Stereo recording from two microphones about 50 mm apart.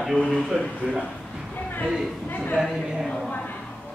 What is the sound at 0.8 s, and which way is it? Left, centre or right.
Speech, centre.